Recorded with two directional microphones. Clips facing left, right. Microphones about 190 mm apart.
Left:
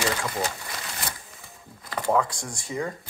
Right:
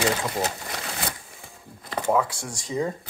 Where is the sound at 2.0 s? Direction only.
5° right (ahead or behind).